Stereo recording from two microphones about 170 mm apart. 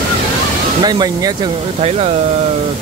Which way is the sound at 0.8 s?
25° right (ahead or behind).